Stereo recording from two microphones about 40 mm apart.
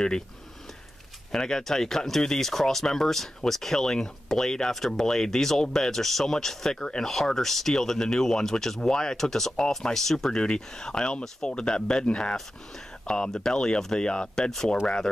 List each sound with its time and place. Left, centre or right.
1.3 s speech: centre
6.8 s speech: left
7.1 s speech: centre
13.9 s speech: left